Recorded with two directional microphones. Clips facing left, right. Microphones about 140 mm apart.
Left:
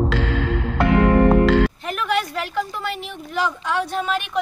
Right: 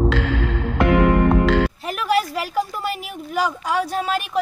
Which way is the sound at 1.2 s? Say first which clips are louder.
Left 2 dB; centre (ahead or behind).